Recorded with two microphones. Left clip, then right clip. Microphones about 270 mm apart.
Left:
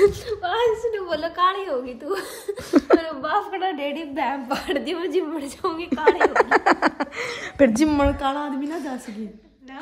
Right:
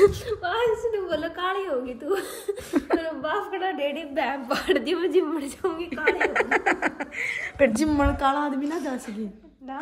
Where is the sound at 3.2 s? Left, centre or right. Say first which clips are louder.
Left 4 dB; centre.